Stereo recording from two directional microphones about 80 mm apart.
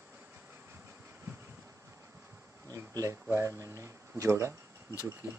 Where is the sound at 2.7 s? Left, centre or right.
Right.